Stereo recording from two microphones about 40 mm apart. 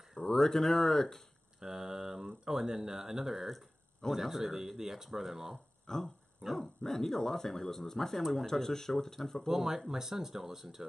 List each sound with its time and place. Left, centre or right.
0.3 s speech: centre
1.6 s speech: centre
5.9 s speech: centre
6.4 s speech: centre
9.5 s speech: centre